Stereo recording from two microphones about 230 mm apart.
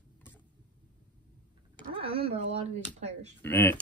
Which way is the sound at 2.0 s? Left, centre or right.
Right.